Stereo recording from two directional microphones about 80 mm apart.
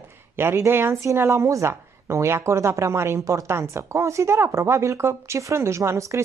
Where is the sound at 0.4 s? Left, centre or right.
Right.